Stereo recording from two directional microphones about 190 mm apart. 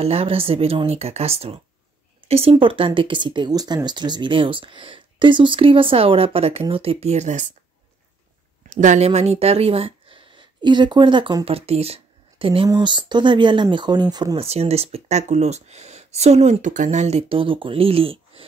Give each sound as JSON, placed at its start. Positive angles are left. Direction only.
{"t": 0.0, "sound": "speech", "side_deg": -30}
{"t": 8.6, "sound": "speech", "side_deg": -40}